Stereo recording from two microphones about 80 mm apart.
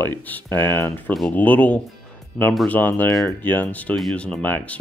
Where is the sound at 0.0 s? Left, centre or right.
Left.